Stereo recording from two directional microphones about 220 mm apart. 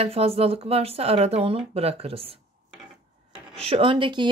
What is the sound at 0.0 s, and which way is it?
Speech, 25° right (ahead or behind).